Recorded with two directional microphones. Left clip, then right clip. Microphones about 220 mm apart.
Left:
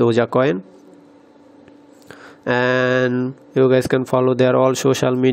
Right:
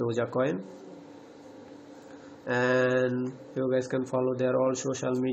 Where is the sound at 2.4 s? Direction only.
45° left (ahead or behind).